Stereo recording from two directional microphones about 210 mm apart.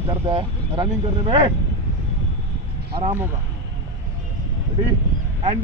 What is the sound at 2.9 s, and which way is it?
Speech, 30° right (ahead or behind).